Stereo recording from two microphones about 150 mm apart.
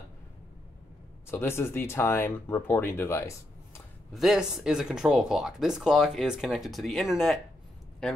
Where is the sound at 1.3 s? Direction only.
15° left (ahead or behind).